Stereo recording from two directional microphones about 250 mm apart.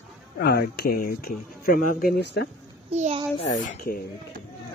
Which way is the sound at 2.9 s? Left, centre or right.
Right.